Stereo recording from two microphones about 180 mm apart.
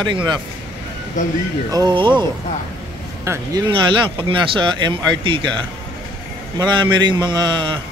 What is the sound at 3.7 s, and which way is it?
Speech, 30° right (ahead or behind).